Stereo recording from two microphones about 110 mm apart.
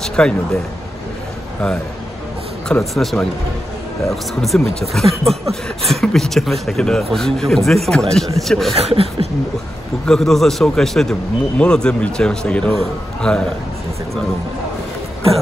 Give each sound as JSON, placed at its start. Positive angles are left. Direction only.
{"t": 0.0, "sound": "speech", "side_deg": 5}
{"t": 2.7, "sound": "a man's voice", "side_deg": 0}
{"t": 8.7, "sound": "speech", "side_deg": -65}
{"t": 10.0, "sound": "a man's voice", "side_deg": 5}